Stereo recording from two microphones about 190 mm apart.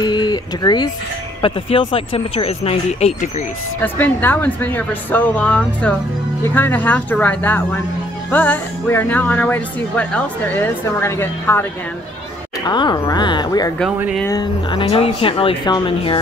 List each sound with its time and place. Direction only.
0.0 s a sound: 20° left (ahead or behind)
1.4 s speech: 30° left (ahead or behind)
3.8 s speech: 10° left (ahead or behind)
12.6 s speech: 20° left (ahead or behind)
13.9 s speech: 5° right (ahead or behind)
14.2 s speech: 20° left (ahead or behind)